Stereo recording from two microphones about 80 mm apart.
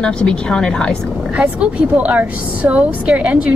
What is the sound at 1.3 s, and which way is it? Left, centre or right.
A woman's voice, centre.